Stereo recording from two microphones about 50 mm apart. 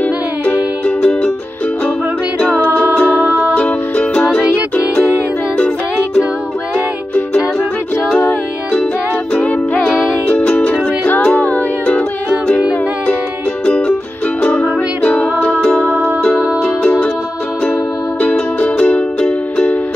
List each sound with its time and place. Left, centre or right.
0.8 s music: left
2.4 s music: left
9.3 s music: left
13.7 s music: left
15.0 s music: left
18.2 s music: left